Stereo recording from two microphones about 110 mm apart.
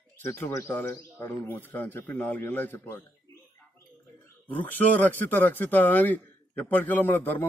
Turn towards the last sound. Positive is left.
turn(degrees=20)  # may be behind; listen again after turning